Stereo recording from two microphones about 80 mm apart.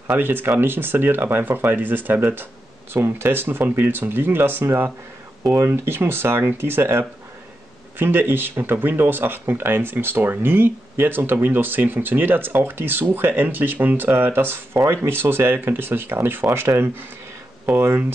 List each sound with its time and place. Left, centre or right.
0.2 s speech: right